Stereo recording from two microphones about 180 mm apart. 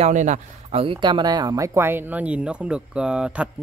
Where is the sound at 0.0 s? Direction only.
40° right (ahead or behind).